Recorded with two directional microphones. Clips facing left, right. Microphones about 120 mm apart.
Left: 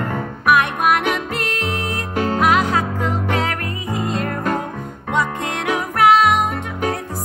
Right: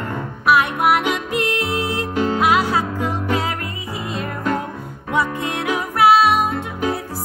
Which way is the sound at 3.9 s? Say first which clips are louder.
Left 7 dB; 50° left (ahead or behind).